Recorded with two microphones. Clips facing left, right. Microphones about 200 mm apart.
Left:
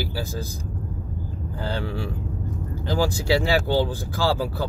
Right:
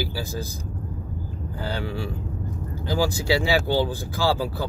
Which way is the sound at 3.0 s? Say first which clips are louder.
Left 1 dB; 50° left (ahead or behind).